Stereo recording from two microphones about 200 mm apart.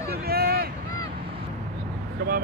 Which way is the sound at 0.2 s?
50° right (ahead or behind).